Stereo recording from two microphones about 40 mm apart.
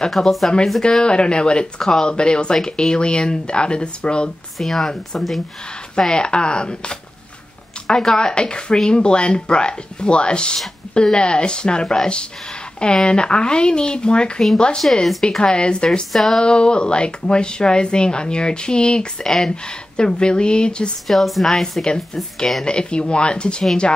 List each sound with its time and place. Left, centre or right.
0.2 s speech: centre
4.6 s speech: centre
5.9 s speech: centre
16.1 s speech: centre
16.3 s speech: left
21.1 s speech: centre; by 23.6 s left